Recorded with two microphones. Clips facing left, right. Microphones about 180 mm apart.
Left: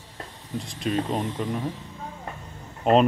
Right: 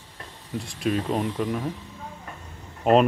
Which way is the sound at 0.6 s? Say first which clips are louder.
Right 1 dB; centre (ahead or behind).